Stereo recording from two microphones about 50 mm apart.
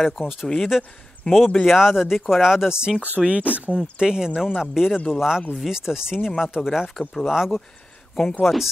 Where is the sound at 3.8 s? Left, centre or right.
Centre.